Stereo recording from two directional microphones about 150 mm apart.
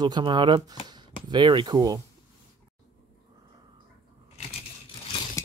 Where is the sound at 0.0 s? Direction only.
30° right (ahead or behind).